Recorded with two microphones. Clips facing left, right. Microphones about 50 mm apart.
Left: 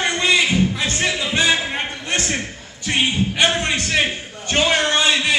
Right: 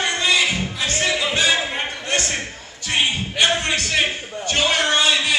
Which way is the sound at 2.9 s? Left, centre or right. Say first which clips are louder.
Left 2 dB; centre.